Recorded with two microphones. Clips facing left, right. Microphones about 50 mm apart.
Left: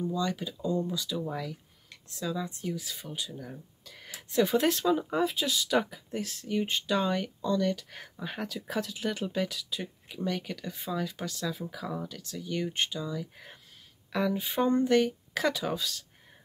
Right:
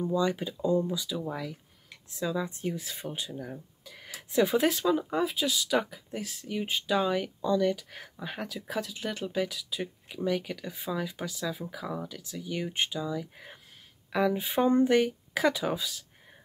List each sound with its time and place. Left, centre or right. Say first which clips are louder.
0.0 s speech: right 3 dB; centre
0.9 s speech: even; centre
2.6 s speech: right 2 dB; right
3.3 s speech: right 3 dB; centre